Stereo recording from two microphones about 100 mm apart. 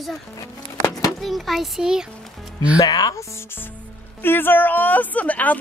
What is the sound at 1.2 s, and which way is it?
Speech, centre (ahead or behind).